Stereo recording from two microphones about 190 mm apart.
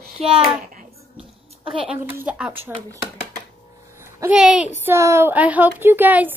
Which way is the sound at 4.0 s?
15° right (ahead or behind).